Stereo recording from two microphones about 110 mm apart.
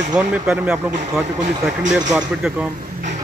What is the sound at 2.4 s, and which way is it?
Speech, 10° right (ahead or behind).